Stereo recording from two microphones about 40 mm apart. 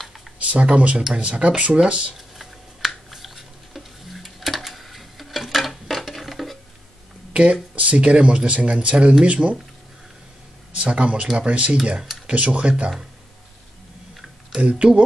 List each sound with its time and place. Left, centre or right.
0.5 s speech: right
2.1 s a sound: centre
7.7 s speech: right
10.8 s speech: right
14.6 s speech: right